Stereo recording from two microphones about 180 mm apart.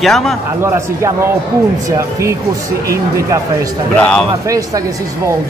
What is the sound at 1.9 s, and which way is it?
Speech, 15° right (ahead or behind).